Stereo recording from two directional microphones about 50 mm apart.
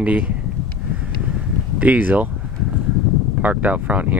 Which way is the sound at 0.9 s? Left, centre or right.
Right.